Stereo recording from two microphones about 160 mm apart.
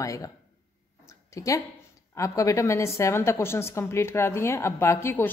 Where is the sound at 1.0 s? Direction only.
20° left (ahead or behind).